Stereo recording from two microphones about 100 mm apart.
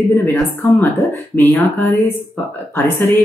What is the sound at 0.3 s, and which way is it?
Speech, 20° left (ahead or behind).